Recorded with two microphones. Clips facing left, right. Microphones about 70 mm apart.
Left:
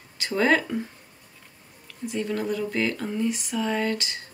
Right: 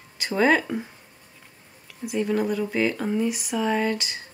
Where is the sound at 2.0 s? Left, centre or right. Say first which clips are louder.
Right 4 dB; centre.